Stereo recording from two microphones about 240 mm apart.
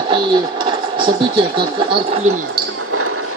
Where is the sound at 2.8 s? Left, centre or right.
Right.